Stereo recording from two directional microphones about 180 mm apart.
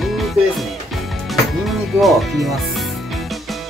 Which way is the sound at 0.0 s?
Centre (ahead or behind).